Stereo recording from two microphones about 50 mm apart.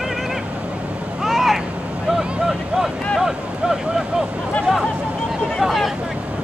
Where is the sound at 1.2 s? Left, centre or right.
Centre.